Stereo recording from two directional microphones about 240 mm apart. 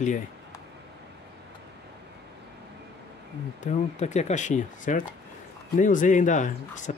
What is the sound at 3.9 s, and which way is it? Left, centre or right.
Speech, left.